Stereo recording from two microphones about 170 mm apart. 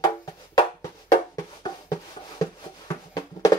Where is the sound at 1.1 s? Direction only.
20° left (ahead or behind).